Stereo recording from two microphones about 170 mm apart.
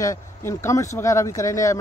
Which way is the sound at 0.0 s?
15° left (ahead or behind).